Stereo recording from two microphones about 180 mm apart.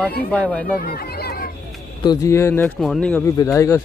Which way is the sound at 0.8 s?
60° left (ahead or behind).